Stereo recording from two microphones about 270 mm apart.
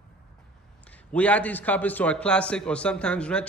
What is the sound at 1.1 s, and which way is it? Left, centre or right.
A man's voice, centre.